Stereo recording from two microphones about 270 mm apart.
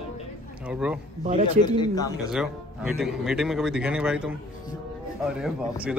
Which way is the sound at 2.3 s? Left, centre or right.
Centre.